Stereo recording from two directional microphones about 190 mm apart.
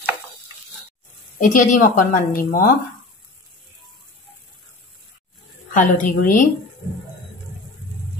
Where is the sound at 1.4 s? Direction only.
40° left (ahead or behind).